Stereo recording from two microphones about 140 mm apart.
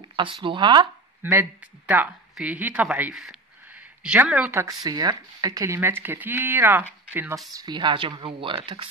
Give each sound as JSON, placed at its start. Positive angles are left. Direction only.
{"t": 0.1, "sound": "speech", "side_deg": -35}
{"t": 1.2, "sound": "speech", "side_deg": -15}
{"t": 7.5, "sound": "speech", "side_deg": -30}